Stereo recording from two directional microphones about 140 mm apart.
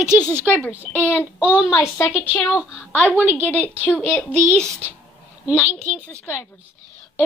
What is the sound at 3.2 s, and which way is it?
Speech, 15° right (ahead or behind).